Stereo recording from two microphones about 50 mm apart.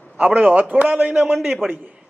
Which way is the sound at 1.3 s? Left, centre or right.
Centre.